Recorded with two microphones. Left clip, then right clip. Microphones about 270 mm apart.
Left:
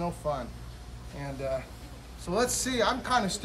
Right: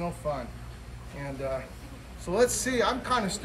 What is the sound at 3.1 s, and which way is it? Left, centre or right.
Speech, centre.